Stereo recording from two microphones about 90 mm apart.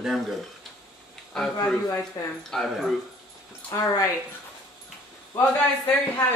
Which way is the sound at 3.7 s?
35° left (ahead or behind).